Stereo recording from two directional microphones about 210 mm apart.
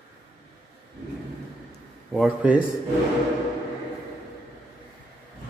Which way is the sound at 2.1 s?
5° right (ahead or behind).